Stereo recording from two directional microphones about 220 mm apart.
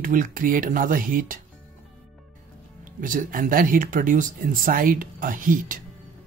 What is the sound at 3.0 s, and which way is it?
Speech, 40° right (ahead or behind).